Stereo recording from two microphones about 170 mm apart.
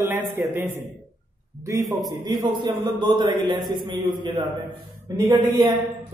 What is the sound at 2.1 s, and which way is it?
A man's voice, 25° right (ahead or behind).